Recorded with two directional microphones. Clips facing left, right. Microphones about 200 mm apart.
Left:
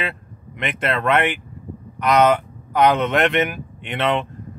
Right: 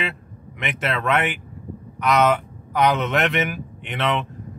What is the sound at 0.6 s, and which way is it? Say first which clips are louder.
A man's voice: left 3 dB; 5° right (ahead or behind).